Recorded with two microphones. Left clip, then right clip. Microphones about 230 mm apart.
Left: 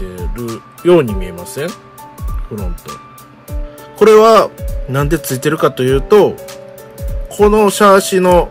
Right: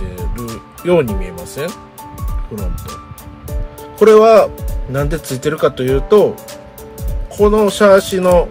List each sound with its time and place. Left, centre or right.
0.8 s speech: centre
4.0 s speech: centre
7.3 s speech: left